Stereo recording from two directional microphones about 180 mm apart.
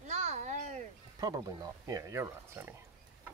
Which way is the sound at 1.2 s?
20° right (ahead or behind).